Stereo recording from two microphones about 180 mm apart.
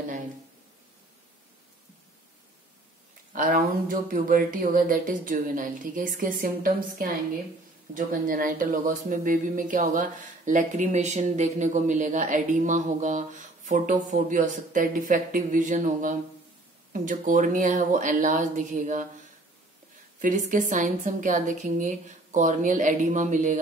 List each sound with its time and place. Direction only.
3.3 s speech: 50° right (ahead or behind)
20.2 s speech: 45° right (ahead or behind)